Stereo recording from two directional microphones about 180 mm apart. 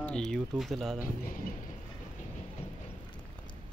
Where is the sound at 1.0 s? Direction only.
50° left (ahead or behind).